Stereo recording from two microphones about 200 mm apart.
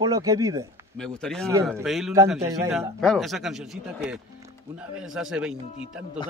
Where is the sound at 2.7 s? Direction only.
Centre (ahead or behind).